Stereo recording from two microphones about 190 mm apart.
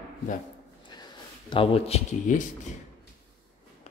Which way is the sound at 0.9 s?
25° left (ahead or behind).